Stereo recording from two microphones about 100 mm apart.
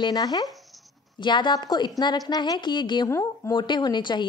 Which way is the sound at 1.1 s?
50° left (ahead or behind).